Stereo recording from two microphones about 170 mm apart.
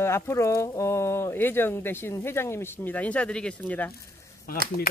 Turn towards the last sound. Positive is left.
turn(degrees=60)  # may be behind; listen again after turning